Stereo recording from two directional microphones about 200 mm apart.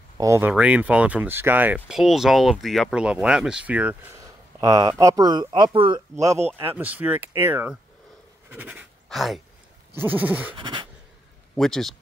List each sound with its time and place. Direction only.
0.2 s speech: 10° right (ahead or behind)
4.6 s speech: 20° right (ahead or behind)
6.6 s speech: 10° right (ahead or behind)
8.5 s pant: 10° right (ahead or behind)
9.9 s speech: 10° right (ahead or behind)
10.5 s speech: 25° right (ahead or behind)
11.5 s a man's voice: centre (ahead or behind)